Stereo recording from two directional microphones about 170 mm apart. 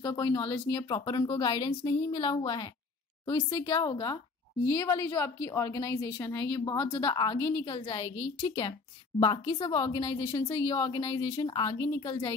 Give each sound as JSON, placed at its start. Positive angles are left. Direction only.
{"t": 0.0, "sound": "a woman's voice", "side_deg": 25}
{"t": 9.2, "sound": "speech", "side_deg": 25}